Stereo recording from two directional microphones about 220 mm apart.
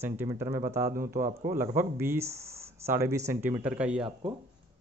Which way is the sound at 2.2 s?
30° right (ahead or behind).